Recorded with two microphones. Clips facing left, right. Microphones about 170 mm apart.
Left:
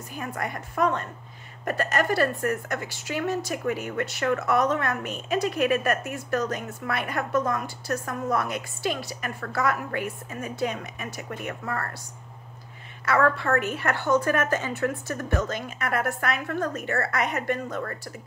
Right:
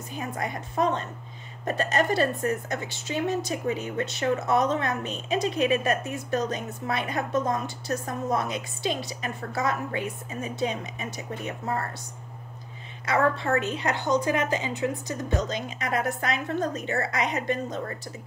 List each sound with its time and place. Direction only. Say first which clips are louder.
0.1 s a woman's voice: even; 20° right (ahead or behind)
13.0 s a woman's voice: left 1 dB; 20° right (ahead or behind)